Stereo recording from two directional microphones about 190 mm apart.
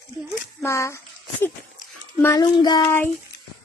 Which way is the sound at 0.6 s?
15° left (ahead or behind).